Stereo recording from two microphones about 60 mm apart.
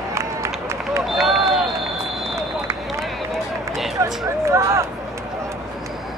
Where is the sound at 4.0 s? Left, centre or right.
Right.